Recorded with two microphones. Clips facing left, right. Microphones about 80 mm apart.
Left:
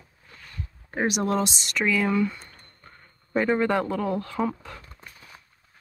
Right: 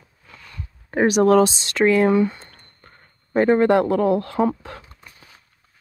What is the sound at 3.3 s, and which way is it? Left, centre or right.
Speech, right.